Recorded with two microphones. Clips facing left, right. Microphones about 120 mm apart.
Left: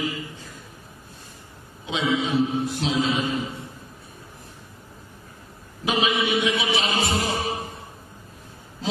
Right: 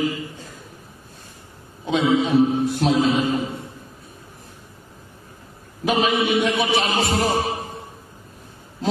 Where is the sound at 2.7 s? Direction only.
50° right (ahead or behind).